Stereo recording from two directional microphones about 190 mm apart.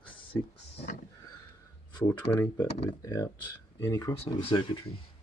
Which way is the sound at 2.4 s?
15° left (ahead or behind).